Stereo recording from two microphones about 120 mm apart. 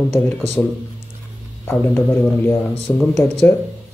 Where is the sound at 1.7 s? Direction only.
20° left (ahead or behind).